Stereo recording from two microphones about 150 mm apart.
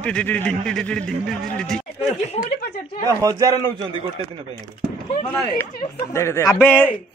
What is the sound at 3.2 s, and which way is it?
A man's voice, 20° right (ahead or behind).